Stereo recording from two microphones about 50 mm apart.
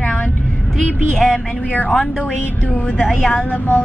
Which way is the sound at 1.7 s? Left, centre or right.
Left.